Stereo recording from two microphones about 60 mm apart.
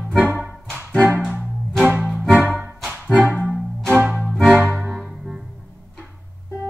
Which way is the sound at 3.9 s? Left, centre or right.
Right.